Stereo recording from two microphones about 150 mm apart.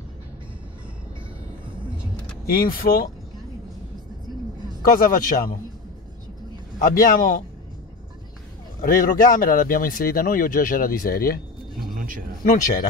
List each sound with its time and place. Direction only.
2.5 s speech: 75° left (ahead or behind)
4.9 s speech: 70° left (ahead or behind)
6.8 s speech: 70° left (ahead or behind)
8.8 s speech: 65° left (ahead or behind)
11.9 s a sound: 65° right (ahead or behind)
12.4 s speech: 65° left (ahead or behind)